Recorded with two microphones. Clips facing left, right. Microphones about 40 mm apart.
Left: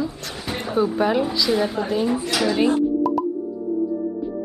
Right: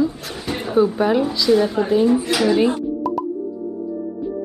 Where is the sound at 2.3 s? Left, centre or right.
Centre.